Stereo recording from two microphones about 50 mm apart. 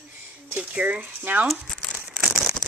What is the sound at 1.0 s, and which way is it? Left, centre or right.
Speech, right.